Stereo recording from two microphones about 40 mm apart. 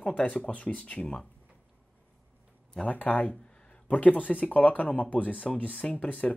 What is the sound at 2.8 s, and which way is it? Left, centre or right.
Speech, left.